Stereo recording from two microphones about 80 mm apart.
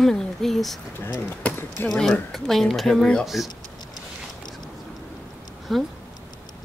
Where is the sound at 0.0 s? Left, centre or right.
Centre.